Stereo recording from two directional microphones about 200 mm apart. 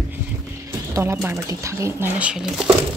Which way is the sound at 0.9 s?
15° right (ahead or behind).